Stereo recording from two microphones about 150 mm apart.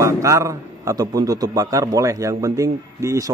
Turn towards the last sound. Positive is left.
turn(degrees=-20)  # may be behind; listen again after turning